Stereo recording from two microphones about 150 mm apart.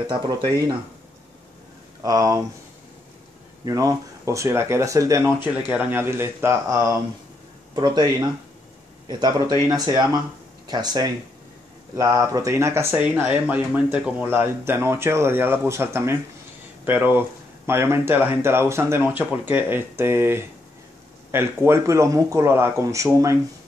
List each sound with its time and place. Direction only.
0.0 s speech: 25° right (ahead or behind)
2.0 s speech: 20° right (ahead or behind)
3.6 s speech: 20° right (ahead or behind)
5.5 s speech: 10° right (ahead or behind); by 8.3 s 30° right (ahead or behind)
10.7 s speech: 25° right (ahead or behind)